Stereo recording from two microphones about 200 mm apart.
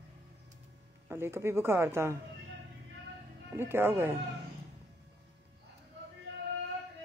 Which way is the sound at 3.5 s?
10° right (ahead or behind).